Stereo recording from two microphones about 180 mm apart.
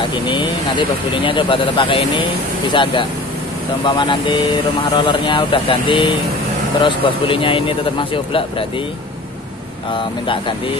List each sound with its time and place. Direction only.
0.1 s a man's voice: 25° left (ahead or behind)
9.9 s a man's voice: 30° left (ahead or behind)